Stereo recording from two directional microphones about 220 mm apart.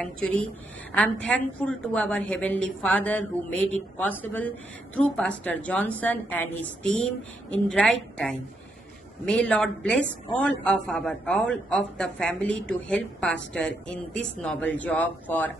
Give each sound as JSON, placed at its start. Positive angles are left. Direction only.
{"t": 0.0, "sound": "a woman's voice", "side_deg": 5}